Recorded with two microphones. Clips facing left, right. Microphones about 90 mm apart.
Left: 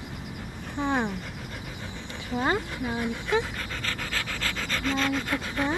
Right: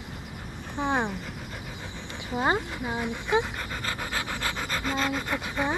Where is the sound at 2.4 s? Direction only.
20° right (ahead or behind).